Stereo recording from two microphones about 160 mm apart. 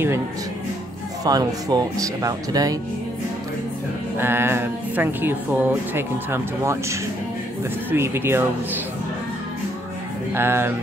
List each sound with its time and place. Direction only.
1.2 s speech: 25° right (ahead or behind)
4.2 s speech: 15° right (ahead or behind)
10.3 s speech: 15° right (ahead or behind)